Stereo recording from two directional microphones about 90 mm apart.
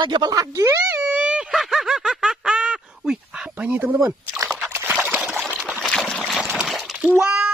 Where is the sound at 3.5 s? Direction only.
20° right (ahead or behind).